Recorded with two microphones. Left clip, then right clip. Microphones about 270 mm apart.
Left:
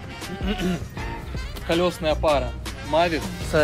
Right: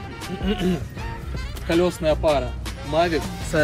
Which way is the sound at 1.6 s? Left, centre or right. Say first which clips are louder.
Right 2 dB; centre.